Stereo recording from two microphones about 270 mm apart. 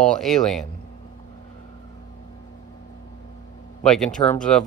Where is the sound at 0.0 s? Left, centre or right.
Centre.